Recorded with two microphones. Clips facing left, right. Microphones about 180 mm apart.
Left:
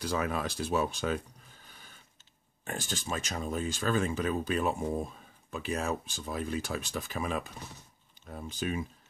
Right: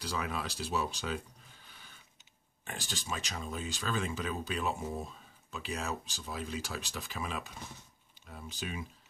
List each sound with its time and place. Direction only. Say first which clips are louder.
0.0 s speech: left 5 dB; 50° left (ahead or behind)